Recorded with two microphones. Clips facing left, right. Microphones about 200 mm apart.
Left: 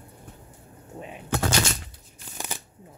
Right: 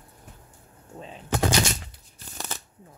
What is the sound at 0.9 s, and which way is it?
Speech, 15° left (ahead or behind).